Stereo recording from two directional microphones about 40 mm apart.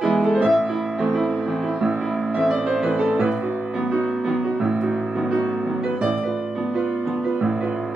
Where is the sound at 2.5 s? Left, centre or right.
Centre.